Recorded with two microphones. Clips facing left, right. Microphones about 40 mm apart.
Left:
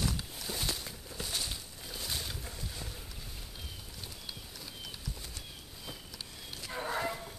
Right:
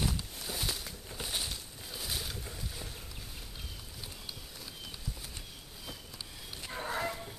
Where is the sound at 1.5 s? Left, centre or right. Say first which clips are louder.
Even; centre.